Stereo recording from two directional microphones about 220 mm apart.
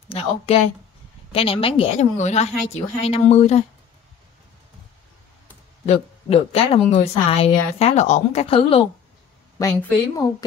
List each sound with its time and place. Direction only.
0.5 s a woman's voice: 25° left (ahead or behind)
5.9 s a woman's voice: 25° left (ahead or behind)
9.6 s speech: 10° left (ahead or behind)